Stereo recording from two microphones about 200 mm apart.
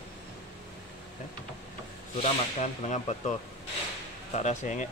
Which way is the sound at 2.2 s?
35° left (ahead or behind).